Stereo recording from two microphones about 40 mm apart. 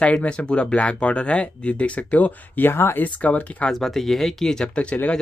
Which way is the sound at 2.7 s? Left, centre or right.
Left.